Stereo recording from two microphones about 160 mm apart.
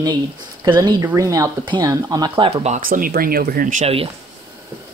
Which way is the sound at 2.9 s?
65° right (ahead or behind).